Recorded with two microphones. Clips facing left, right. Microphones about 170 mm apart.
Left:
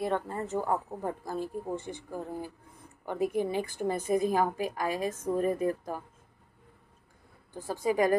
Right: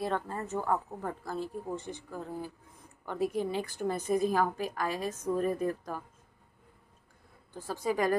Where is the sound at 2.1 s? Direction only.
15° left (ahead or behind).